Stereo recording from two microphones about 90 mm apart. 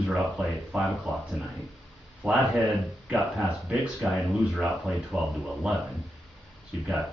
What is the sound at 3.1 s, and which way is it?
Speech, 5° right (ahead or behind).